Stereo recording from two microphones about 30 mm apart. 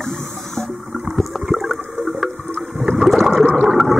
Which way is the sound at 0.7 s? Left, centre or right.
Centre.